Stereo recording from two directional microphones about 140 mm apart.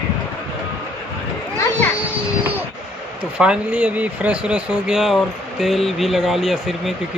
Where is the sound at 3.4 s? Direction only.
10° right (ahead or behind).